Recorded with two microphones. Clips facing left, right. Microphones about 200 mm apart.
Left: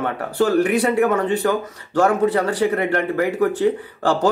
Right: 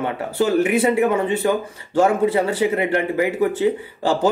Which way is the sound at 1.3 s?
25° right (ahead or behind).